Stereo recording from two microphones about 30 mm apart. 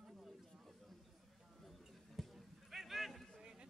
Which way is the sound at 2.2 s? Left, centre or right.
Centre.